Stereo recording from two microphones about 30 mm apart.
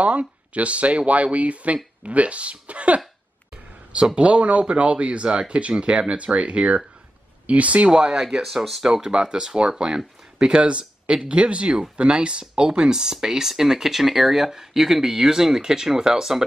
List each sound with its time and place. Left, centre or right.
0.0 s speech: right
3.9 s speech: right
7.9 s speech: right
10.5 s speech: right
12.7 s speech: right